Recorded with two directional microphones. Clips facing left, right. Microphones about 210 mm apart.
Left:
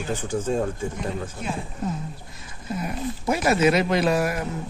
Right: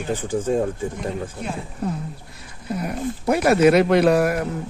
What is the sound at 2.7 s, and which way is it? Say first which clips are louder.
Speech: right 3 dB; 60° right (ahead or behind).